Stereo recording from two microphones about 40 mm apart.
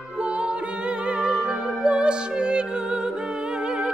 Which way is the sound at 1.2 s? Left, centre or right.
Right.